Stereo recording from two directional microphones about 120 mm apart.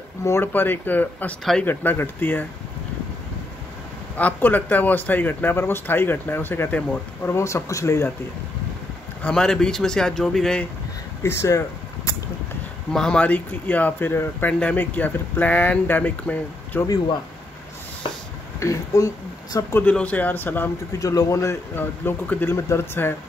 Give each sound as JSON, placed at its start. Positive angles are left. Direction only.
{"t": 0.2, "sound": "speech", "side_deg": 20}
{"t": 1.4, "sound": "speech", "side_deg": 5}
{"t": 1.7, "sound": "speech", "side_deg": 15}
{"t": 4.2, "sound": "speech", "side_deg": 15}
{"t": 9.2, "sound": "speech", "side_deg": 5}
{"t": 11.2, "sound": "speech", "side_deg": 25}
{"t": 12.9, "sound": "speech", "side_deg": 5}
{"t": 18.6, "sound": "speech", "side_deg": 25}
{"t": 19.8, "sound": "speech", "side_deg": 10}